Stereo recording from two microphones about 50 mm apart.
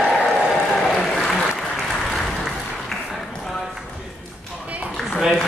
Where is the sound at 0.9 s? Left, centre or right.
Centre.